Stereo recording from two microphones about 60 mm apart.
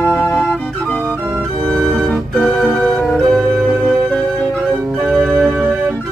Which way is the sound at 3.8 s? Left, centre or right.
Right.